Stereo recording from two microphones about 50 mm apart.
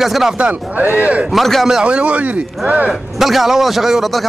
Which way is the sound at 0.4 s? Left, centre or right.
Right.